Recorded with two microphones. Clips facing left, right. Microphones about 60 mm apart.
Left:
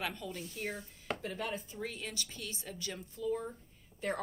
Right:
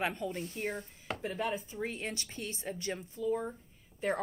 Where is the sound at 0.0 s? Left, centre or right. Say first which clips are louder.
Right 5 dB; right.